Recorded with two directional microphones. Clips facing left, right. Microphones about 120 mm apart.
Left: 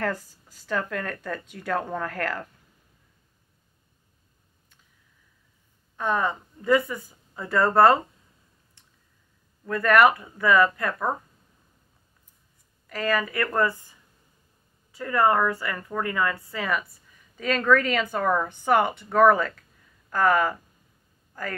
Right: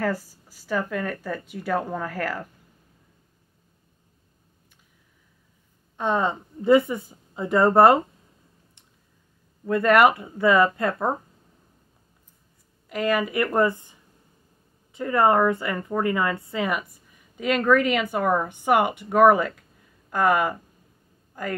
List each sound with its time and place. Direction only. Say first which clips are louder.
0.0 s a woman's voice: right 2 dB; 10° right (ahead or behind)
5.9 s a woman's voice: right 2 dB; 25° right (ahead or behind)
9.7 s a woman's voice: right 2 dB; 20° right (ahead or behind)
12.8 s a woman's voice: right 3 dB; 20° right (ahead or behind)